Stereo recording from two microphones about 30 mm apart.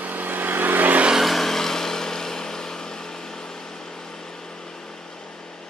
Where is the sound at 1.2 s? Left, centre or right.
Centre.